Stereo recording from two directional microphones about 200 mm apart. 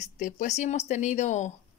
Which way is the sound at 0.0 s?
35° left (ahead or behind).